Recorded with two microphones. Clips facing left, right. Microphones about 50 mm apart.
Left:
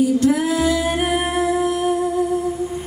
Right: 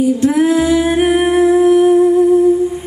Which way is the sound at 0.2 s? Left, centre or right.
Right.